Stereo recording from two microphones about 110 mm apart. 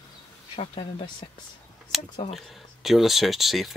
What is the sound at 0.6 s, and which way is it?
Speech, 55° left (ahead or behind).